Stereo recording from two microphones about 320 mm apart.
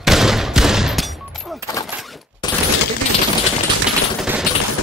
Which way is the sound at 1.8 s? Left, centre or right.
Centre.